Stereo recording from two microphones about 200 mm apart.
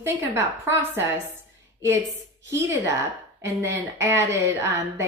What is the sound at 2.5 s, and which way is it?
Speech, 15° right (ahead or behind).